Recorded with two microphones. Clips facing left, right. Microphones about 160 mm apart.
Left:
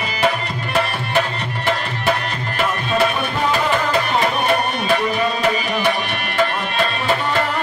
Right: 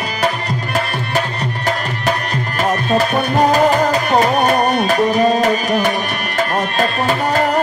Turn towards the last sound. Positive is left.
turn(degrees=-40)  # may be behind; listen again after turning